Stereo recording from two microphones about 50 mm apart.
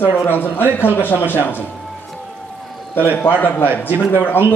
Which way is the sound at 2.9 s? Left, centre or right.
Left.